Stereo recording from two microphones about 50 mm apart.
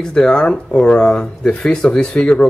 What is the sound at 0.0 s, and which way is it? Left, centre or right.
Speech, centre.